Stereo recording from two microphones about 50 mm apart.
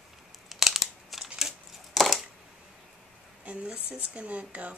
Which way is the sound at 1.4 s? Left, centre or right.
Centre.